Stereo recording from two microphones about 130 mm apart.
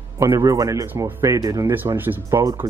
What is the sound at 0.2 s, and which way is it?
A man's voice, 25° right (ahead or behind).